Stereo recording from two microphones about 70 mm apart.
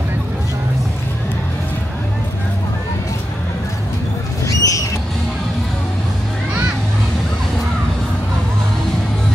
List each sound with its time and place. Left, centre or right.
4.5 s rodents: left